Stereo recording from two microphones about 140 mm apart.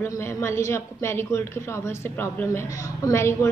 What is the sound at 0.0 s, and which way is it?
A man's voice, 20° left (ahead or behind).